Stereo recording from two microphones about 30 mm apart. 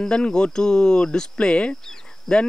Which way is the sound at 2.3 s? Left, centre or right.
Centre.